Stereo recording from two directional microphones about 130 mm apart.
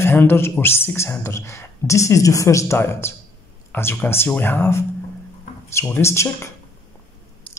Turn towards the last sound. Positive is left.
turn(degrees=20)  # may be behind; listen again after turning